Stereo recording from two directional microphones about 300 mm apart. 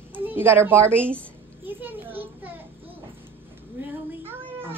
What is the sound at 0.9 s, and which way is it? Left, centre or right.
Speech, centre.